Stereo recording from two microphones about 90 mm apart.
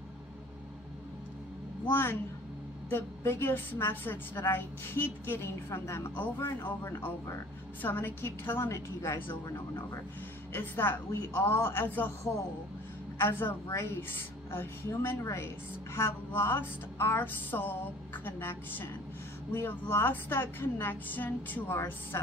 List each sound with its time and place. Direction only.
1.9 s a woman's voice: 25° left (ahead or behind)
10.5 s a woman's voice: 25° left (ahead or behind)
13.2 s a woman's voice: 25° left (ahead or behind)